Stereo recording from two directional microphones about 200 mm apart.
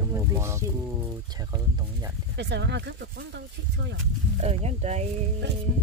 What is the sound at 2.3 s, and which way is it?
Speech, 60° right (ahead or behind).